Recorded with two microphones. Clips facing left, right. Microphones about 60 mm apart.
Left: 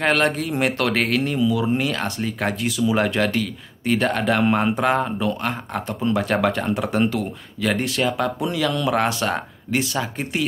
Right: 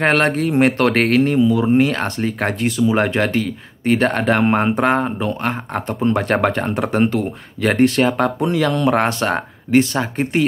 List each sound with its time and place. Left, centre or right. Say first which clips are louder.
0.0 s speech: right 4 dB; right